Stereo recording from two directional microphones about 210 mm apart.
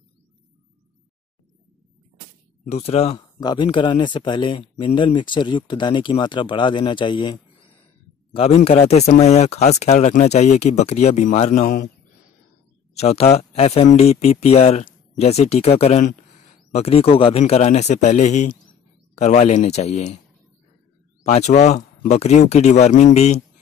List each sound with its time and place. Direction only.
2.6 s speech: 30° left (ahead or behind)
8.4 s speech: 30° left (ahead or behind)
12.9 s speech: 30° left (ahead or behind)
21.2 s speech: 30° left (ahead or behind)